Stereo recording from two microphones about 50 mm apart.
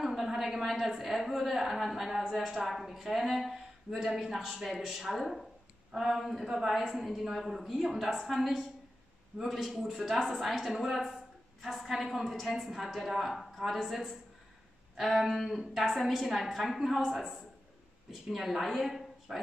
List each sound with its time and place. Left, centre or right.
0.0 s a woman's voice: centre